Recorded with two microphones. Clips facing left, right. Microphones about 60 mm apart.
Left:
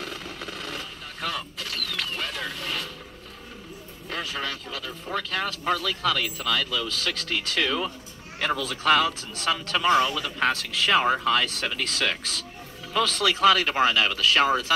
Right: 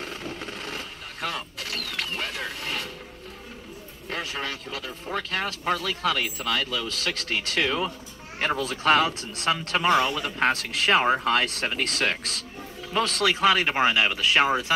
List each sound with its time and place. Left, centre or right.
0.0 s a sound: right
4.1 s speech: right
7.6 s speech: right
13.2 s speech: centre